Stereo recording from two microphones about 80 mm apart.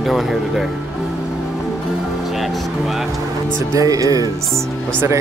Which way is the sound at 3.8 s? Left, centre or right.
Right.